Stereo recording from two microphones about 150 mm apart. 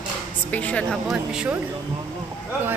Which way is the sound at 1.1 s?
5° right (ahead or behind).